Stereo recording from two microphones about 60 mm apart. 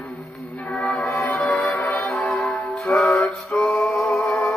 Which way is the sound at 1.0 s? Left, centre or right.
Left.